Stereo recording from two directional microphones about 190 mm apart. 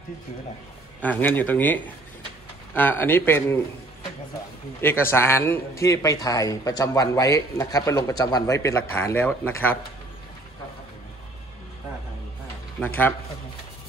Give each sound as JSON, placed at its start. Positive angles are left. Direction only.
{"t": 1.0, "sound": "a man's voice", "side_deg": 10}
{"t": 4.8, "sound": "a man's voice", "side_deg": 10}
{"t": 12.8, "sound": "a man's voice", "side_deg": 10}